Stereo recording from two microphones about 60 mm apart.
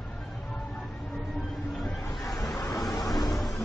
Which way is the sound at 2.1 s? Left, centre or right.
Centre.